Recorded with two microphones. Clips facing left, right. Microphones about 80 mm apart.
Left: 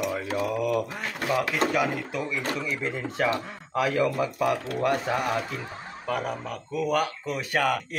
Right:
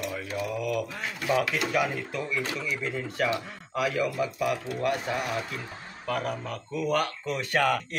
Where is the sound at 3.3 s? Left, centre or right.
Left.